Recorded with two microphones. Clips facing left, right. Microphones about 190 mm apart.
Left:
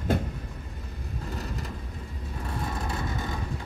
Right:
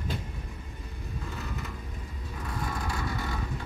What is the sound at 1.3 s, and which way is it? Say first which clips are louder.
Vehicle: left 4 dB; 35° left (ahead or behind).